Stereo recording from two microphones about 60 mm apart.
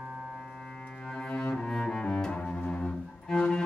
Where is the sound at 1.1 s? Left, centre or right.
Centre.